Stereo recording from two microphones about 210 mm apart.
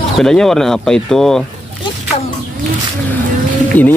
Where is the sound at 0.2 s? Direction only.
5° left (ahead or behind).